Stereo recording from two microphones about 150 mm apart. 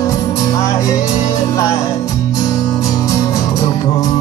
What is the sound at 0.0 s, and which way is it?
Music, 25° left (ahead or behind).